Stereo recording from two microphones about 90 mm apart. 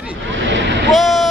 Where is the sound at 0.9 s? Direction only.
Centre (ahead or behind).